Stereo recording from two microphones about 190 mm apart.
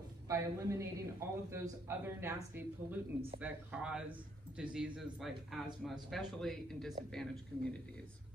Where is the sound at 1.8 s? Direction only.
10° right (ahead or behind).